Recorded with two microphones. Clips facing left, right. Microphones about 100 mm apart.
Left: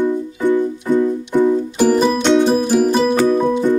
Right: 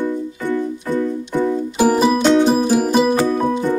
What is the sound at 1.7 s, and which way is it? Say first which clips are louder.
Music: right 2 dB; 10° right (ahead or behind).